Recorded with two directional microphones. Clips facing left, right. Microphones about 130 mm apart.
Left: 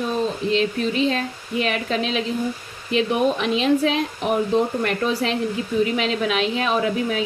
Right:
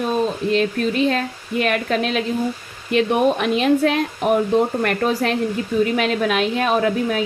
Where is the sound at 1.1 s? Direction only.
55° right (ahead or behind).